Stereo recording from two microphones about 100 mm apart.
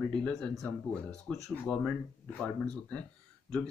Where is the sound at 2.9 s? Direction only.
10° left (ahead or behind).